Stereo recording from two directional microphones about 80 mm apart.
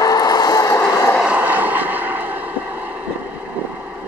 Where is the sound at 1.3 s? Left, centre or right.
Centre.